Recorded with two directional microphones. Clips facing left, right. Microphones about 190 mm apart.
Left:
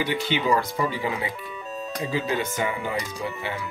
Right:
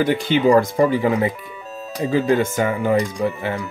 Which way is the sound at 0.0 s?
50° right (ahead or behind).